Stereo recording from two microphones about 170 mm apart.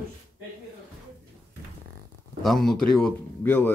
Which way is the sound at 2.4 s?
Centre (ahead or behind).